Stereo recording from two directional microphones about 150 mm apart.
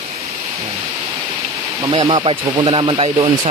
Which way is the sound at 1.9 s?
35° right (ahead or behind).